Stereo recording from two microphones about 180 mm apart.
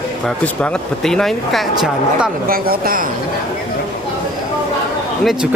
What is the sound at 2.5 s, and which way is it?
Speech, 55° right (ahead or behind).